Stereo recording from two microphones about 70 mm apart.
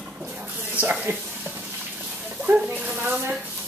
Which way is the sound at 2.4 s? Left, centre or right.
Right.